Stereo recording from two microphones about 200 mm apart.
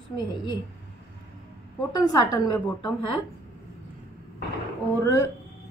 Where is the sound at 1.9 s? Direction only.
20° left (ahead or behind).